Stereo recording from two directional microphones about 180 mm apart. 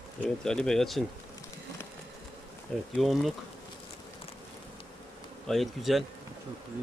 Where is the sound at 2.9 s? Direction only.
Centre (ahead or behind).